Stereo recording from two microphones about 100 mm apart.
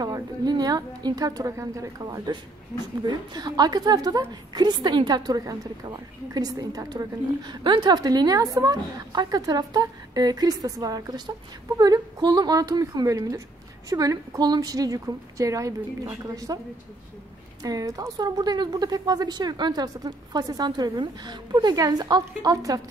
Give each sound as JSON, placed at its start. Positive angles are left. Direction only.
{"t": 0.0, "sound": "a woman's voice", "side_deg": -40}
{"t": 17.6, "sound": "a woman's voice", "side_deg": -35}